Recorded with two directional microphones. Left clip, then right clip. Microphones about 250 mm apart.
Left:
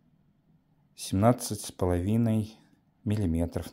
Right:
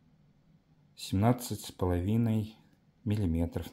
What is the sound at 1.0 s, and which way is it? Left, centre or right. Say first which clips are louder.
Speech: left 5 dB; left.